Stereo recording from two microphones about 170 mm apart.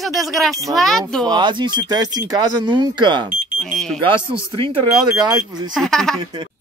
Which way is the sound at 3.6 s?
Centre (ahead or behind).